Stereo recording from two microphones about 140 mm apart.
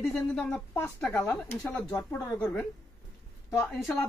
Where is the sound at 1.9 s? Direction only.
25° left (ahead or behind).